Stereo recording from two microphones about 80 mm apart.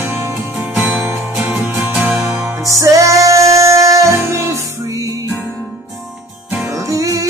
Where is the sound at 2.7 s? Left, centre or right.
Right.